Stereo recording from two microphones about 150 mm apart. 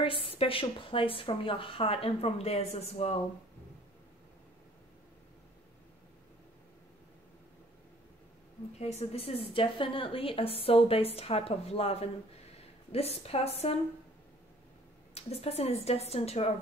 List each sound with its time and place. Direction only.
0.0 s a woman's voice: 35° left (ahead or behind)
8.7 s a woman's voice: 45° left (ahead or behind)
15.1 s speech: 45° left (ahead or behind)